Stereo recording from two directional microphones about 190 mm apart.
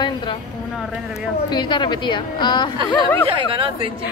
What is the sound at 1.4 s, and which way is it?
A woman's voice, 25° left (ahead or behind).